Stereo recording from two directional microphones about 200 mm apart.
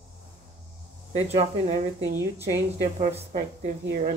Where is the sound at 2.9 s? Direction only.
35° right (ahead or behind).